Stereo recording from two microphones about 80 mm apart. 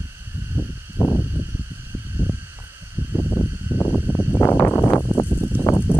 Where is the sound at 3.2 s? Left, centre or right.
Left.